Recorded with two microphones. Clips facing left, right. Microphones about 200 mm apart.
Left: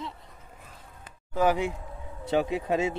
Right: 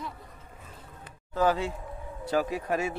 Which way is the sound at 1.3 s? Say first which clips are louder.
Left 1 dB; 15° left (ahead or behind).